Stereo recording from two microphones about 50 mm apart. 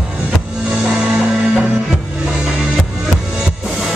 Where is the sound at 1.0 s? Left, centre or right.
Centre.